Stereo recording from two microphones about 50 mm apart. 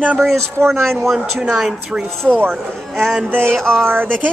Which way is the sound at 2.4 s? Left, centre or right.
Right.